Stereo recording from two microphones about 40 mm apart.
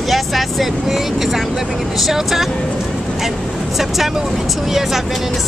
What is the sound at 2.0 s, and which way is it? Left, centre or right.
Speech, centre.